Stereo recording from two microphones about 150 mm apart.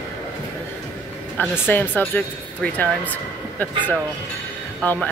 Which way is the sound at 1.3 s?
15° left (ahead or behind).